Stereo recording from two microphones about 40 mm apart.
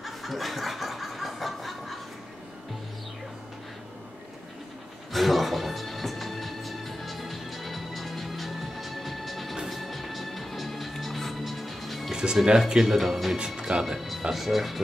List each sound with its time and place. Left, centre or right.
0.0 s snicker: centre
5.1 s music: centre
12.1 s speech: centre
13.6 s speech: centre
13.9 s speech: centre